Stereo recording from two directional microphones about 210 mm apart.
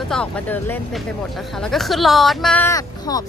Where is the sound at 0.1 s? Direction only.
5° left (ahead or behind).